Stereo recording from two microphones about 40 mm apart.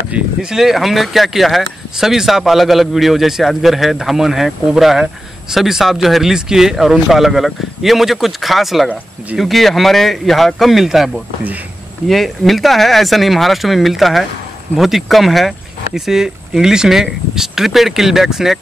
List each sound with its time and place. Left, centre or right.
0.4 s speech: centre
0.7 s a man's voice: centre
12.1 s a man's voice: centre